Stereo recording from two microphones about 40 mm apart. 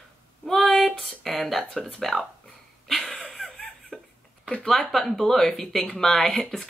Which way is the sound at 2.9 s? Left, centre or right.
Centre.